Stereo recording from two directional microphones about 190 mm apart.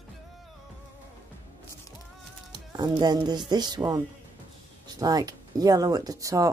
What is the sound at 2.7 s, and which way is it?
Speech, 20° right (ahead or behind).